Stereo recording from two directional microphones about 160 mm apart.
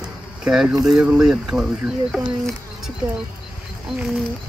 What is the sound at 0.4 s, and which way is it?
Speech, 5° right (ahead or behind).